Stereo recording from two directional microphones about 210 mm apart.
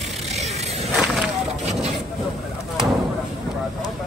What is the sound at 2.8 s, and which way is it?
Slam, 5° right (ahead or behind).